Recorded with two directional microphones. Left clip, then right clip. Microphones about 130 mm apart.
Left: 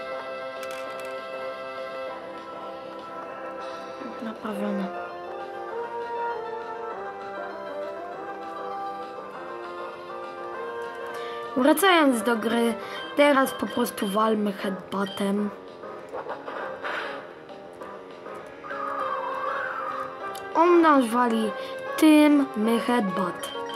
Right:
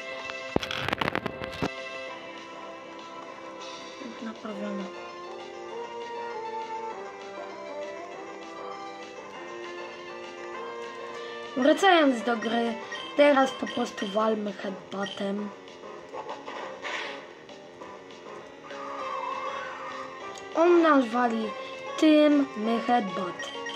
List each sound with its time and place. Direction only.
11.5 s speech: 40° left (ahead or behind)
16.5 s a sound: 50° right (ahead or behind)
20.5 s speech: 45° left (ahead or behind)